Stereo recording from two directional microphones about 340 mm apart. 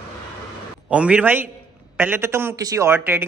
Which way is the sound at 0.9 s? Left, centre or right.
Centre.